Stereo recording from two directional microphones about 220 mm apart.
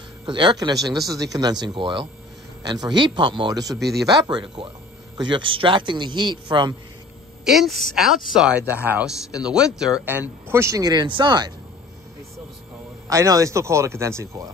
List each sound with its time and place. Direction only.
0.2 s a man's voice: 20° right (ahead or behind)
7.4 s speech: centre (ahead or behind); by 11.5 s 20° right (ahead or behind)
13.1 s speech: 15° right (ahead or behind)